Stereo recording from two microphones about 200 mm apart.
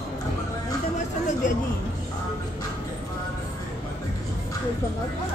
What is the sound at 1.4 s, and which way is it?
Speech, 40° left (ahead or behind).